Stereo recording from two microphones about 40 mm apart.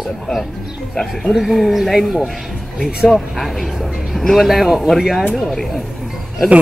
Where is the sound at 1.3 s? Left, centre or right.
Centre.